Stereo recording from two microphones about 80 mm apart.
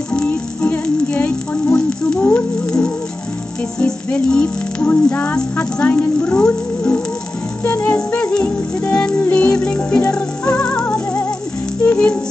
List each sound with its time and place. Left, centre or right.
0.3 s music: centre